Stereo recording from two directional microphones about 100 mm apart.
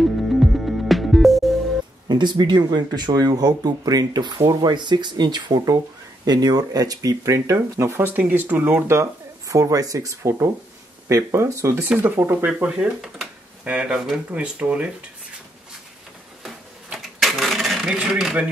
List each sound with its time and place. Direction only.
0.0 s music: centre (ahead or behind)
2.0 s speech: 50° right (ahead or behind); by 12.4 s 25° right (ahead or behind)
12.4 s speech: 10° right (ahead or behind)
16.4 s a sound: 5° right (ahead or behind)
17.9 s speech: 5° right (ahead or behind)